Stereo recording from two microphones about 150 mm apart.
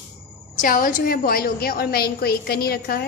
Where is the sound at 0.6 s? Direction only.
65° left (ahead or behind); by 3.1 s 90° left.